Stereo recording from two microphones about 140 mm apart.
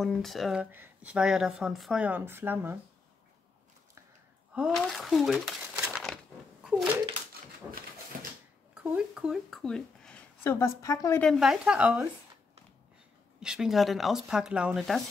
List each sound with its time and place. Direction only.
0.0 s speech: centre (ahead or behind); by 2.8 s 15° right (ahead or behind)
4.6 s speech: centre (ahead or behind)
7.7 s speech: 10° right (ahead or behind)
8.1 s a sound: 90° right
8.7 s speech: 5° right (ahead or behind)
10.4 s speech: 20° left (ahead or behind)
11.1 s speech: centre (ahead or behind)
13.4 s speech: 5° right (ahead or behind)